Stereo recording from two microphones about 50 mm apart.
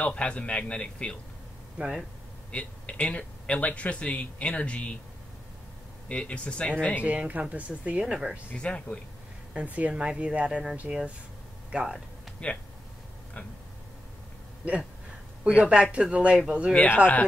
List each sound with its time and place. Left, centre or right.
0.0 s speech: left
1.8 s speech: right
2.5 s speech: left
6.0 s speech: left
7.0 s speech: right
8.0 s speech: centre
8.5 s speech: left
9.7 s speech: right
12.4 s speech: left
14.6 s speech: right
16.7 s speech: left